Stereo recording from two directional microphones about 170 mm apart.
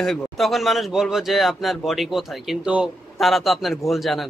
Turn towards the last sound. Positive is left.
turn(degrees=0)  # may be behind; listen again after turning